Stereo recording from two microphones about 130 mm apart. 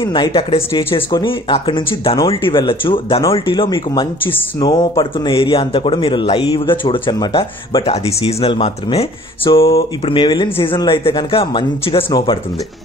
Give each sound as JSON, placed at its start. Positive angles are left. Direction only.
{"t": 0.0, "sound": "speech", "side_deg": 40}